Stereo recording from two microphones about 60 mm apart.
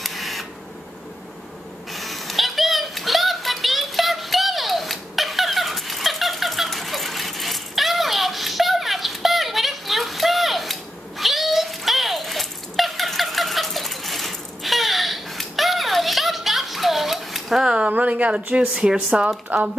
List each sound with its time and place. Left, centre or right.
0.0 s camera: centre
1.9 s a sound: centre
17.6 s speech: centre